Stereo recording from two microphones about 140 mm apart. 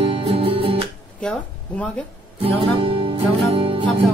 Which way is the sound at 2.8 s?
40° right (ahead or behind).